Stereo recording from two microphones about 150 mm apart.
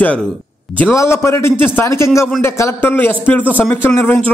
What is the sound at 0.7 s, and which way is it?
A man's voice, 15° left (ahead or behind).